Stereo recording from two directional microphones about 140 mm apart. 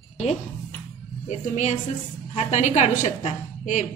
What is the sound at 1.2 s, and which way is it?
A woman's voice, 55° left (ahead or behind).